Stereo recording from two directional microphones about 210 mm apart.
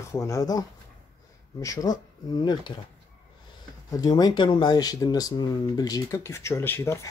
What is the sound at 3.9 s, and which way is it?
Speech, 15° left (ahead or behind).